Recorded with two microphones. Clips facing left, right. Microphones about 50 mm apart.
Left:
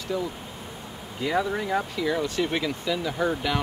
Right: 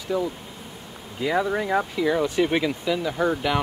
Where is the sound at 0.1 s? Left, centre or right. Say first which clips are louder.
Right 5 dB; centre.